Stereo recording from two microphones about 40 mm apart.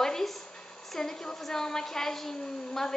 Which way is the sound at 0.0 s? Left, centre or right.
Centre.